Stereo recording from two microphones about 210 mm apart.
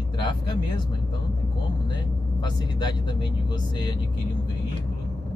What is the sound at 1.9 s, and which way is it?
Speech, 20° left (ahead or behind).